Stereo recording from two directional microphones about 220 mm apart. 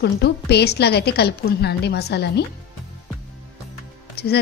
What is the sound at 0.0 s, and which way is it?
A woman's voice, 50° left (ahead or behind).